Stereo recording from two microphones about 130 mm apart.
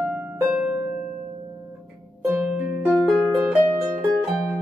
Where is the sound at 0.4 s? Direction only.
15° right (ahead or behind).